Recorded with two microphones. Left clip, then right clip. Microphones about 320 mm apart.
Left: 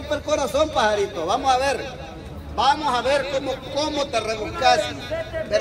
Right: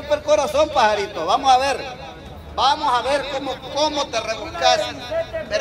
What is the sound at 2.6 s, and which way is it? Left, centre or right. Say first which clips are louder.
Speech: right 2 dB; centre.